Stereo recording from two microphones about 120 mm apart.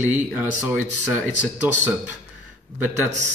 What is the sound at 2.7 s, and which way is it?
Speech, 15° right (ahead or behind).